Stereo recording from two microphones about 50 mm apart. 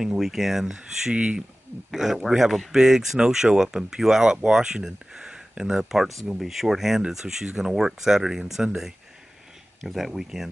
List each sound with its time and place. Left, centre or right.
0.0 s speech: centre
1.1 s speech: right
1.9 s speech: centre